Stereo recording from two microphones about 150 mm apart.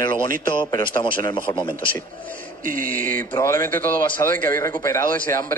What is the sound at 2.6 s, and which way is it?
Speech, 65° right (ahead or behind).